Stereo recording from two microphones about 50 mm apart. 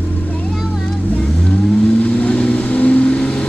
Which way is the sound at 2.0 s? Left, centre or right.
Left.